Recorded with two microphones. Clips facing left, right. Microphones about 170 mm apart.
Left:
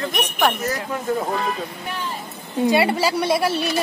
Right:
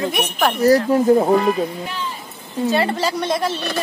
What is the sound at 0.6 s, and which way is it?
Speech, 35° right (ahead or behind).